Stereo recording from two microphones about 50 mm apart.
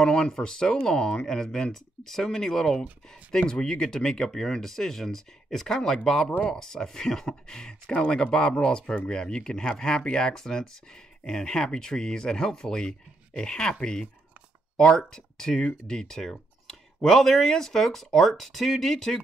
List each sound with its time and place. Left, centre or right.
0.0 s speech: centre